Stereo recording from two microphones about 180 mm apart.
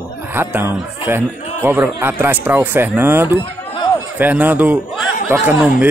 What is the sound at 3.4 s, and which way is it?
Chatter, 25° left (ahead or behind).